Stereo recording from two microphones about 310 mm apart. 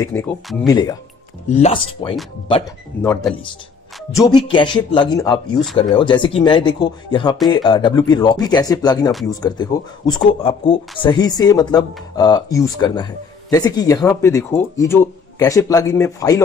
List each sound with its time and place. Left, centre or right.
0.0 s speech: centre